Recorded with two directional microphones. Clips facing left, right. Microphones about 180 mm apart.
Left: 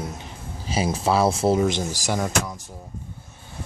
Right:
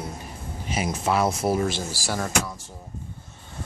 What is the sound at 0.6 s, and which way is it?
Speech, 30° left (ahead or behind).